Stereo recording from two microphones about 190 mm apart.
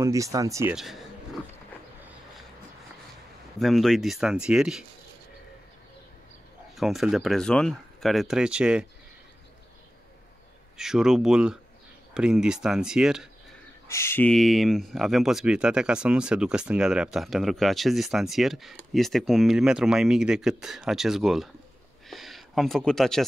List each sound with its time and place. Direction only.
0.0 s speech: 15° right (ahead or behind)
3.5 s speech: centre (ahead or behind)
6.8 s speech: centre (ahead or behind)
10.8 s speech: centre (ahead or behind)
13.8 s speech: 15° left (ahead or behind); by 21.5 s centre (ahead or behind)
22.0 s a sound: centre (ahead or behind)